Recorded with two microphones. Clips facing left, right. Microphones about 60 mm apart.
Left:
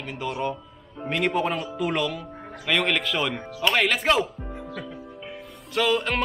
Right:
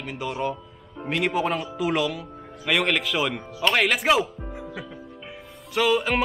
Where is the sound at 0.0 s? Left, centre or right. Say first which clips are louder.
Even; centre.